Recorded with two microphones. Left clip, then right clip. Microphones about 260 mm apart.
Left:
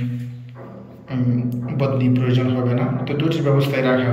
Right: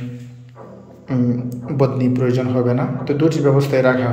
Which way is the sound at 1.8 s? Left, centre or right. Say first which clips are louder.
Right 3 dB; right.